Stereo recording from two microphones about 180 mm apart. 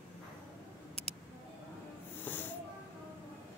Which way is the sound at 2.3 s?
10° left (ahead or behind).